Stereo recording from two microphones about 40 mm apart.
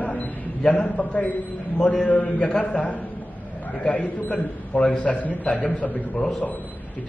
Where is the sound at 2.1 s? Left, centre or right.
Left.